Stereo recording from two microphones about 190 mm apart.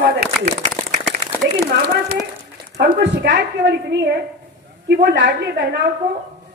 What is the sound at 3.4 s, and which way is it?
A woman's voice, 65° right (ahead or behind).